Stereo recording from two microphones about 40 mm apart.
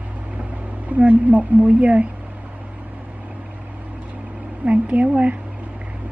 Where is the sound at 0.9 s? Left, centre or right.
Right.